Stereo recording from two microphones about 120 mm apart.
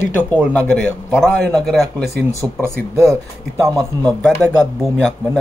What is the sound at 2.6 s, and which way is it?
Speech, 25° right (ahead or behind).